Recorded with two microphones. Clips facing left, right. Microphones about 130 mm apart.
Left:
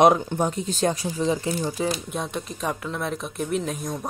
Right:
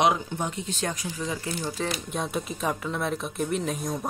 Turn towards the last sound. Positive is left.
turn(degrees=0)  # may be behind; listen again after turning